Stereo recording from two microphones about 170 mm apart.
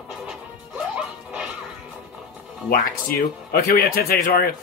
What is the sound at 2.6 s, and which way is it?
A man's voice, 60° left (ahead or behind).